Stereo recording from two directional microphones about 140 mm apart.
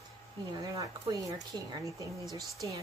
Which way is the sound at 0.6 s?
25° right (ahead or behind).